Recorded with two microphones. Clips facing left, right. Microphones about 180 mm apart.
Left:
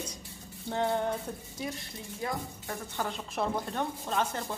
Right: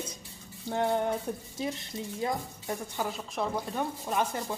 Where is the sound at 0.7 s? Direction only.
15° right (ahead or behind).